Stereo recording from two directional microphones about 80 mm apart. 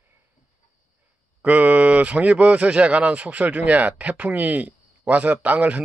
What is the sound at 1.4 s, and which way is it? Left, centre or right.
Speech, centre.